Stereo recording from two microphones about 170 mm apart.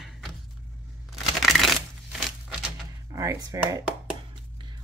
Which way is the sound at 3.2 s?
20° right (ahead or behind).